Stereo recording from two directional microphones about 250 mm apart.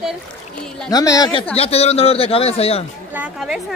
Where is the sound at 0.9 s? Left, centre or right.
Centre.